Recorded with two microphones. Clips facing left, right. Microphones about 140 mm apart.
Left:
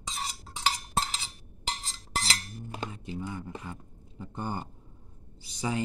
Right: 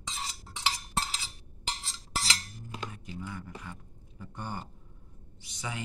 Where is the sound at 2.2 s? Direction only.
25° left (ahead or behind).